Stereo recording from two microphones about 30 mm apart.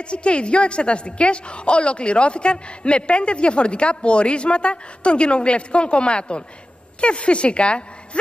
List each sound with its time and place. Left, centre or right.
0.0 s a woman's voice: left